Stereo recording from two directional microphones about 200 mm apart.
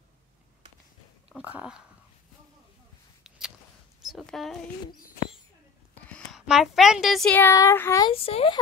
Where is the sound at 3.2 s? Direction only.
5° right (ahead or behind).